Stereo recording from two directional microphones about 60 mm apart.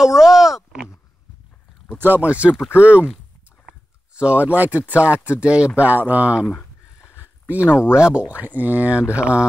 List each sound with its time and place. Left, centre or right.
0.0 s speech: centre
2.0 s speech: right
4.1 s speech: centre
7.0 s a sound: left
7.6 s speech: left
7.9 s speech: centre
8.3 s speech: right